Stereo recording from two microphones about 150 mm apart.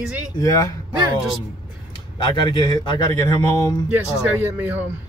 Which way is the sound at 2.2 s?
30° left (ahead or behind).